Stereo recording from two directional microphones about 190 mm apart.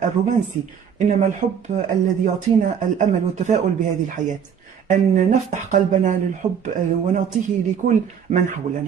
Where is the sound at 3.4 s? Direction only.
40° right (ahead or behind).